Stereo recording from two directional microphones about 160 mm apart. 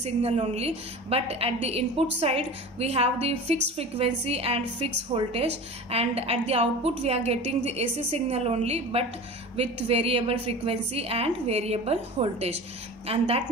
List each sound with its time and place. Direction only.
0.0 s a woman's voice: 40° right (ahead or behind)